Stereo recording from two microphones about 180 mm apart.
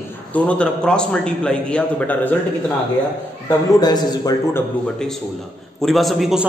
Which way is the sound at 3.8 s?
20° left (ahead or behind).